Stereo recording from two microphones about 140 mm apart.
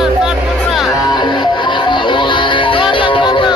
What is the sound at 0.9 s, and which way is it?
Music, 30° left (ahead or behind).